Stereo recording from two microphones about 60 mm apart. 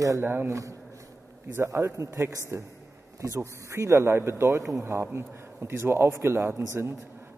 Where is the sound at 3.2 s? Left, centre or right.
Right.